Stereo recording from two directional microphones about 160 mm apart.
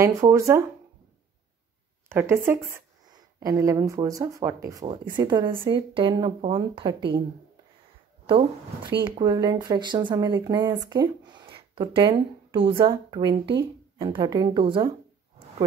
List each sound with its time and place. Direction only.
0.0 s speech: 20° right (ahead or behind)
2.0 s speech: 15° right (ahead or behind); by 7.0 s 35° right (ahead or behind)
9.0 s speech: 30° right (ahead or behind)